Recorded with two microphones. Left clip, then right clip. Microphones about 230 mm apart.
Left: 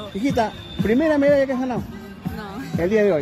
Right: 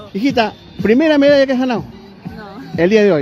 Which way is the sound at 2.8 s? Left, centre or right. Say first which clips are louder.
Right 7 dB; right.